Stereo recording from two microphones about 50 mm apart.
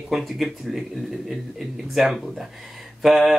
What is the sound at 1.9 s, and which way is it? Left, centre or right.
Speech, centre.